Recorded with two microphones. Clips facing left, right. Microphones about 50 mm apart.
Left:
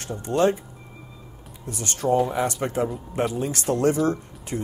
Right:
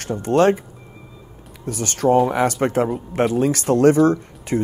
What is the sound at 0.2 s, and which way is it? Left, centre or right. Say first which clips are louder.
Speech: right 5 dB; right.